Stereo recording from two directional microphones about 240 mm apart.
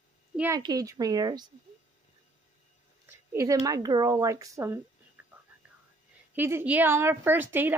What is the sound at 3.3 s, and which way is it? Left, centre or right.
A woman's voice, centre.